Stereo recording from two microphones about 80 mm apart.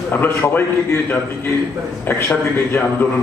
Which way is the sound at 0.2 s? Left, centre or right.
Left.